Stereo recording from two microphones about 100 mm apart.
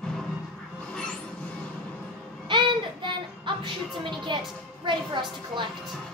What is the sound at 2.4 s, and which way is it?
Child singing, 55° right (ahead or behind).